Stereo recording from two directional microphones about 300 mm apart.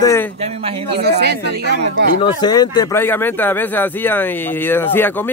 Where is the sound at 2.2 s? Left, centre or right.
Centre.